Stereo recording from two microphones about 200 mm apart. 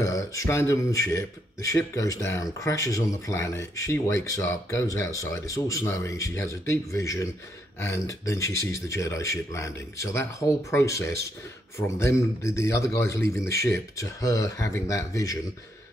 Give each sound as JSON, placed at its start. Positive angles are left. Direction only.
{"t": 0.0, "sound": "speech", "side_deg": 15}